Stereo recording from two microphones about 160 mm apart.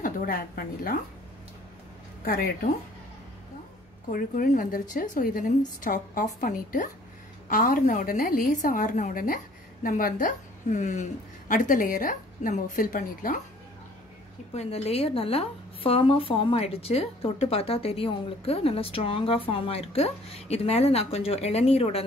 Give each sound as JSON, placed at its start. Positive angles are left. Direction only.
{"t": 0.0, "sound": "a woman's voice", "side_deg": 65}
{"t": 2.2, "sound": "a woman's voice", "side_deg": 65}
{"t": 4.1, "sound": "a woman's voice", "side_deg": 55}
{"t": 14.5, "sound": "a woman's voice", "side_deg": 40}